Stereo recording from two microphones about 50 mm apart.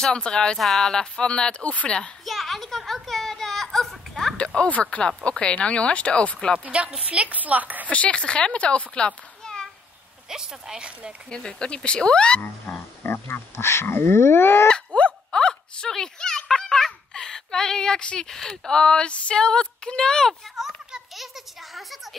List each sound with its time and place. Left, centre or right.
0.0 s speech: centre
0.6 s speech: centre
0.9 s speech: centre
2.2 s a sound: centre
4.6 s speech: left
6.6 s speech: right
7.9 s speech: left
10.3 s a woman's voice: centre
11.2 s speech: centre
13.0 s speech: left
15.0 s a sound: left
18.4 s speech: centre
20.5 s a sound: centre